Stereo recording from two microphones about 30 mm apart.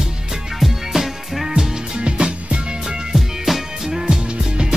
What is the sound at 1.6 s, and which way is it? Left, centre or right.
Music, right.